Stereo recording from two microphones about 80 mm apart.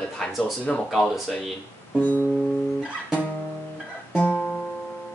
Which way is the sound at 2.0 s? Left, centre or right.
Left.